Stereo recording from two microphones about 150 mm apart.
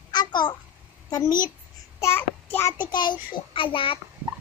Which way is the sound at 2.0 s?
15° left (ahead or behind).